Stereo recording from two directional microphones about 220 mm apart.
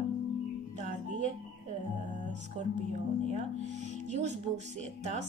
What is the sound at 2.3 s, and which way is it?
Music, 30° right (ahead or behind).